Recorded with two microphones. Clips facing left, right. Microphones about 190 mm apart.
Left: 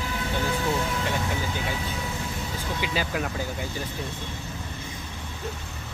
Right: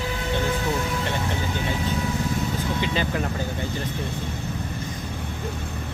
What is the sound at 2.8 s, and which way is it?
Speech, 5° left (ahead or behind).